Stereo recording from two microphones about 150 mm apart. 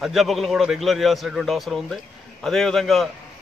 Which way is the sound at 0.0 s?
Centre (ahead or behind).